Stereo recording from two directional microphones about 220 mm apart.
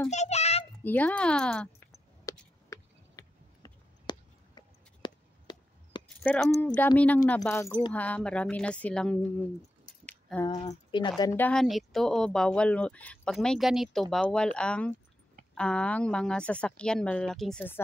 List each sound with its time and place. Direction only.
0.1 s a sound: 30° left (ahead or behind)
0.8 s speech: 5° left (ahead or behind)
2.3 s a sound: 15° left (ahead or behind)
6.2 s speech: 5° left (ahead or behind)
10.0 s keys jangling: 10° left (ahead or behind)
10.5 s speech: 30° left (ahead or behind)
11.0 s speech: 20° left (ahead or behind)